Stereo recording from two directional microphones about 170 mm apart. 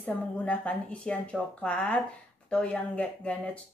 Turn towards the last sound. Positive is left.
turn(degrees=10)  # may be behind; listen again after turning